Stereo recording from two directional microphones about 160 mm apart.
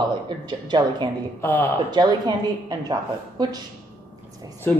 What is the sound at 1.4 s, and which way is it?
Speech, 15° left (ahead or behind).